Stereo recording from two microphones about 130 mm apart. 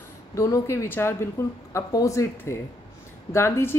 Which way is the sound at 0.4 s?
25° left (ahead or behind).